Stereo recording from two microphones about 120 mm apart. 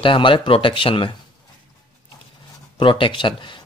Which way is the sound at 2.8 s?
45° left (ahead or behind).